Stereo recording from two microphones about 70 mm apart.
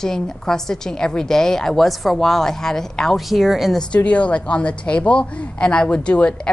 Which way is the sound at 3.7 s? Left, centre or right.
Centre.